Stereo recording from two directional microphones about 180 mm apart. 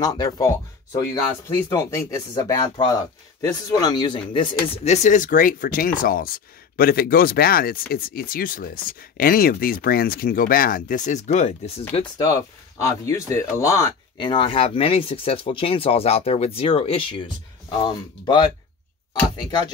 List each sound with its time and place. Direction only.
0.0 s speech: 20° left (ahead or behind)
4.9 s speech: 45° left (ahead or behind)
11.9 s speech: 25° left (ahead or behind)
18.2 s speech: 25° left (ahead or behind)